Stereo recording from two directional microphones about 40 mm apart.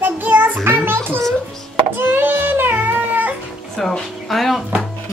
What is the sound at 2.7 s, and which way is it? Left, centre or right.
Cat, right.